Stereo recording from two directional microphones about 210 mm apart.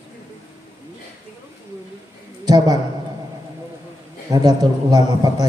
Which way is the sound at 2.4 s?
20° right (ahead or behind).